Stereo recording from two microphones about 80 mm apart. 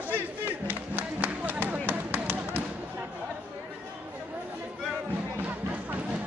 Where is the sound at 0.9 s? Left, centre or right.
Right.